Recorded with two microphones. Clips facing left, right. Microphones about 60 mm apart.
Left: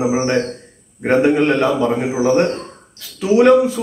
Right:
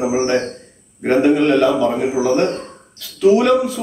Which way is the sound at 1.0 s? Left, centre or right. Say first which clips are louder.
Even; left.